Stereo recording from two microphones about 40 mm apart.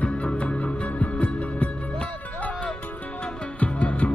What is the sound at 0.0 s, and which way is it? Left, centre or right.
Music, left.